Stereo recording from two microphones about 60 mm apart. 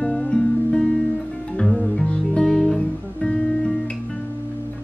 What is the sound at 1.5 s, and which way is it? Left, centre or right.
Music, centre.